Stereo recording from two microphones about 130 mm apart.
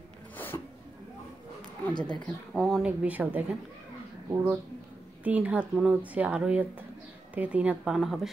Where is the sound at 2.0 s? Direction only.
35° left (ahead or behind).